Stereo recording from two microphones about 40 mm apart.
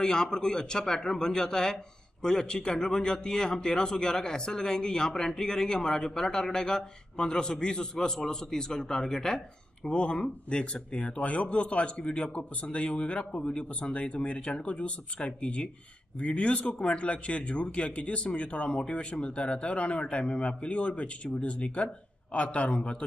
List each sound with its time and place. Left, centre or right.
0.0 s speech: centre
9.8 s speech: left